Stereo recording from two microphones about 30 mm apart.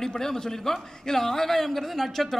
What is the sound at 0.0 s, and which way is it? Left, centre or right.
Speech, centre.